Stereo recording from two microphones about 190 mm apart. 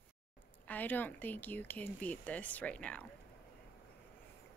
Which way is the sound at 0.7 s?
10° left (ahead or behind).